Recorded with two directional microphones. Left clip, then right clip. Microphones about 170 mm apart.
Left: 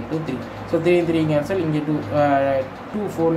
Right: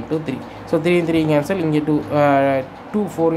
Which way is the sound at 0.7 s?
50° right (ahead or behind).